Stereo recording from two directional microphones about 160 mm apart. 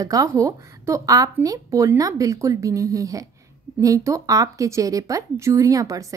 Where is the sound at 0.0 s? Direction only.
20° right (ahead or behind).